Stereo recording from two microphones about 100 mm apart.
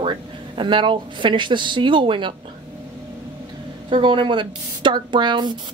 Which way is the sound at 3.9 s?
55° right (ahead or behind).